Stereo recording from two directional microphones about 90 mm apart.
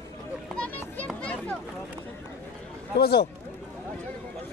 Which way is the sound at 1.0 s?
10° left (ahead or behind).